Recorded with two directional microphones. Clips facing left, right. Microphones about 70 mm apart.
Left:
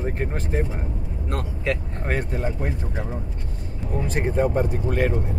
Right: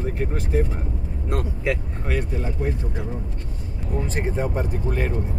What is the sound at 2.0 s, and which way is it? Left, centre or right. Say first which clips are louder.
Speech: left 1 dB; left.